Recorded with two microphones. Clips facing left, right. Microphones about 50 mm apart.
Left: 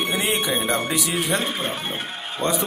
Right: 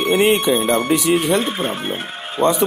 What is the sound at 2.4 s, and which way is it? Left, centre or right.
Speech, right.